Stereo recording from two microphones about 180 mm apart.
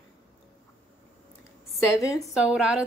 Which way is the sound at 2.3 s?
5° right (ahead or behind).